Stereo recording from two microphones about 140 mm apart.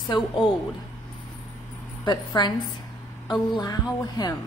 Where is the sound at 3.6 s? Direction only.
30° left (ahead or behind).